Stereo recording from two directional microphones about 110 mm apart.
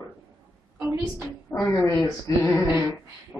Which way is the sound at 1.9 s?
30° left (ahead or behind).